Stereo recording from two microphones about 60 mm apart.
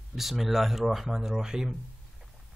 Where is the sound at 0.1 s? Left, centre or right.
Centre.